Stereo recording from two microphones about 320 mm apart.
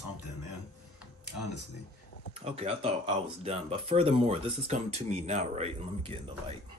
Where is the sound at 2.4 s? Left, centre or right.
Centre.